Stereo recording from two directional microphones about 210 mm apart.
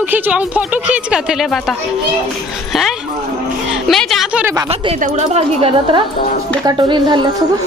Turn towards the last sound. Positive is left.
turn(degrees=-20)  # may be behind; listen again after turning